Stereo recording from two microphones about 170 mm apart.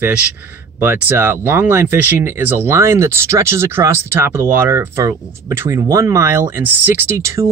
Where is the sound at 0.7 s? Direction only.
15° right (ahead or behind).